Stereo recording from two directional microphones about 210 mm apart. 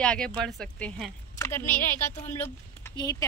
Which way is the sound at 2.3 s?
10° left (ahead or behind).